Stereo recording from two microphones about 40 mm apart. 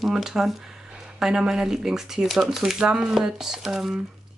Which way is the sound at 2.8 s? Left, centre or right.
Right.